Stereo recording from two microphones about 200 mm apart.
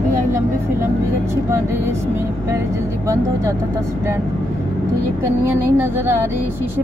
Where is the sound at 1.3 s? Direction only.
15° right (ahead or behind).